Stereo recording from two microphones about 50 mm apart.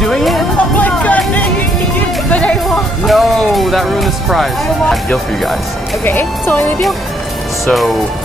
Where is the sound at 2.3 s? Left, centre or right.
Left.